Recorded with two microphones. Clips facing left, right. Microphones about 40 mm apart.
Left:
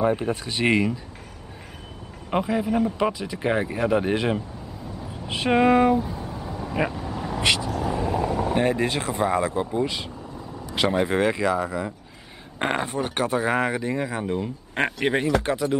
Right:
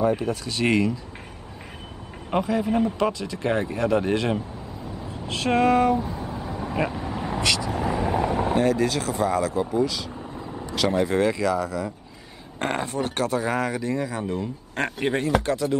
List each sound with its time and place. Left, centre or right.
0.0 s speech: left
2.3 s speech: centre
5.9 s vehicle: centre
7.4 s speech: left
7.7 s vehicle: right
8.5 s speech: left